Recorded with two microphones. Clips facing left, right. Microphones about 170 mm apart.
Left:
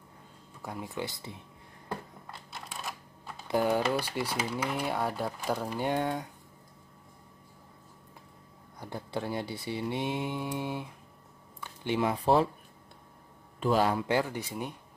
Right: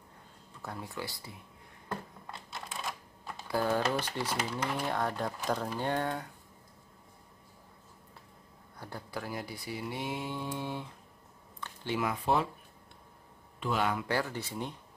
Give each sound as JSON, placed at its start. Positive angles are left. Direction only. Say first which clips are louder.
{"t": 0.6, "sound": "speech", "louder": "left 3 dB", "side_deg": 15}
{"t": 2.5, "sound": "typing", "louder": "right 1 dB", "side_deg": 0}
{"t": 3.4, "sound": "speech", "louder": "left 3 dB", "side_deg": 15}
{"t": 8.7, "sound": "speech", "louder": "left 5 dB", "side_deg": 20}
{"t": 11.6, "sound": "a sound", "louder": "left 3 dB", "side_deg": 15}
{"t": 12.0, "sound": "speech", "louder": "left 5 dB", "side_deg": 30}
{"t": 13.6, "sound": "speech", "louder": "left 5 dB", "side_deg": 35}
{"t": 14.0, "sound": "speech", "louder": "left 4 dB", "side_deg": 15}